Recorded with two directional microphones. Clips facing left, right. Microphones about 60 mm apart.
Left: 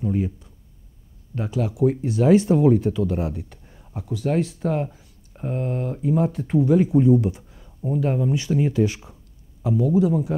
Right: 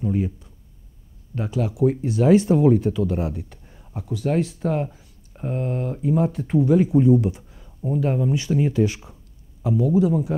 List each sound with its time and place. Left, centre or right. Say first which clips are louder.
0.0 s speech: even; right
1.3 s speech: even; right
7.9 s speech: even; right